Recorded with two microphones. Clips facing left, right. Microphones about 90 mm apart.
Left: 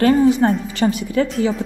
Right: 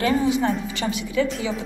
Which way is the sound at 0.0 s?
45° left (ahead or behind).